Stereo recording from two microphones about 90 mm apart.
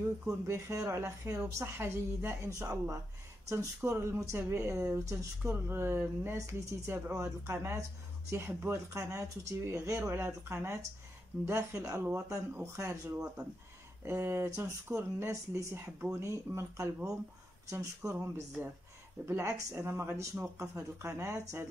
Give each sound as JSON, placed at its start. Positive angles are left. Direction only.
{"t": 0.5, "sound": "speech", "side_deg": -35}